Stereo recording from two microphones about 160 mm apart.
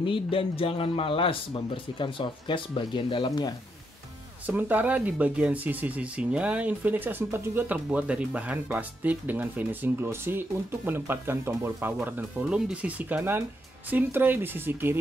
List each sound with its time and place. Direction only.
0.0 s speech: 35° left (ahead or behind)
4.5 s speech: 10° right (ahead or behind)